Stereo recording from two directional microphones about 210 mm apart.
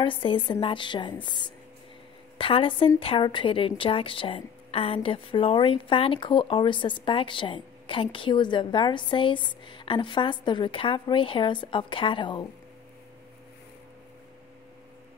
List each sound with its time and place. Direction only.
0.0 s a woman's voice: 25° left (ahead or behind)